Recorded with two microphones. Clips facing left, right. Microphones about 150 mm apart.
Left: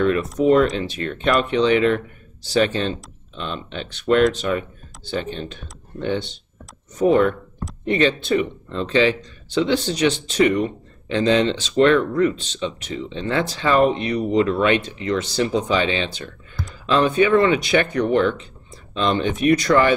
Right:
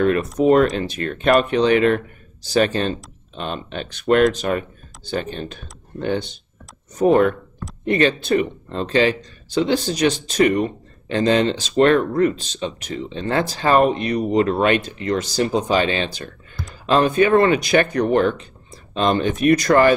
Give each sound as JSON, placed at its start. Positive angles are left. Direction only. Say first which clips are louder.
{"t": 0.0, "sound": "speech", "louder": "right 1 dB", "side_deg": -50}